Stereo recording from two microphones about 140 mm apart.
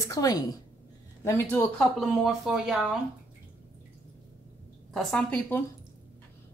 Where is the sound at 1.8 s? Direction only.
Centre (ahead or behind).